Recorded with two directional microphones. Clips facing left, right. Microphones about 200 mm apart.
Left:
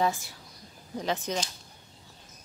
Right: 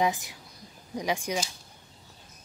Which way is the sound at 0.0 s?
15° right (ahead or behind).